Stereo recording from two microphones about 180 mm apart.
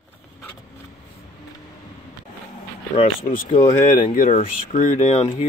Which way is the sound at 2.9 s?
30° left (ahead or behind).